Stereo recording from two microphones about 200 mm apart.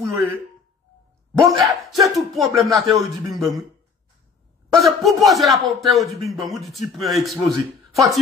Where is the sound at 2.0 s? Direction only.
Centre (ahead or behind).